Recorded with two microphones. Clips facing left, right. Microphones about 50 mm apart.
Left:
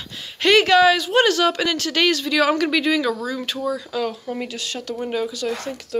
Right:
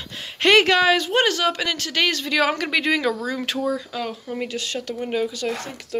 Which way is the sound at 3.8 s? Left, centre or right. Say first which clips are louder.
Left 4 dB; centre.